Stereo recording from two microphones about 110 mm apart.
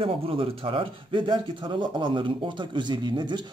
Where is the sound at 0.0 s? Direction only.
55° right (ahead or behind).